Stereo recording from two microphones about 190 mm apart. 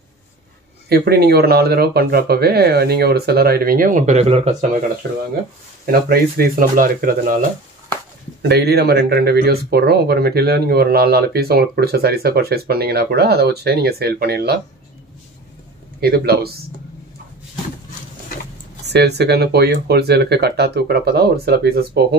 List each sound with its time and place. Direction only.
0.8 s speech: 55° right (ahead or behind); by 4.6 s 35° right (ahead or behind)
5.9 s speech: 50° right (ahead or behind)
8.4 s speech: 60° right (ahead or behind)
16.0 s speech: 55° right (ahead or behind)
18.9 s speech: 60° right (ahead or behind)